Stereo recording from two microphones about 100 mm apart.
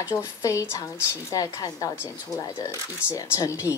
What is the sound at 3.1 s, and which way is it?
Speech, 35° left (ahead or behind).